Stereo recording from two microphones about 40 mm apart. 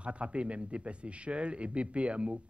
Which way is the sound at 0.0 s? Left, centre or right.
Right.